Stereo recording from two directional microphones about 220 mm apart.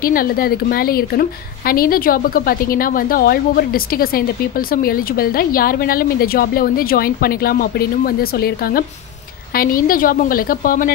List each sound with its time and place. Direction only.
0.0 s a woman's voice: 40° left (ahead or behind)